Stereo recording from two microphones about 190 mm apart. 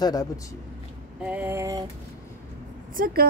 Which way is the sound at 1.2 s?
10° right (ahead or behind).